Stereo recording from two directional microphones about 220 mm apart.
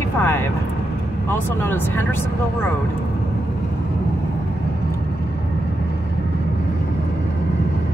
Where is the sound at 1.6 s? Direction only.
10° left (ahead or behind).